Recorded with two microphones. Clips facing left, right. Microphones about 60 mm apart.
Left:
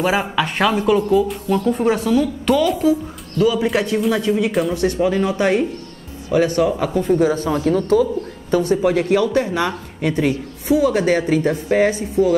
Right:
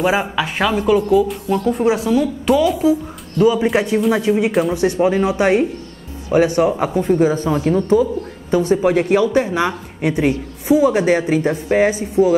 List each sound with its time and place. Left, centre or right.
0.0 s a woman's voice: centre
3.3 s speech: right
4.5 s a woman's voice: centre
4.7 s speech: right